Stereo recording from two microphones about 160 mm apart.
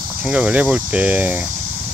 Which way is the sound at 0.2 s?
10° right (ahead or behind).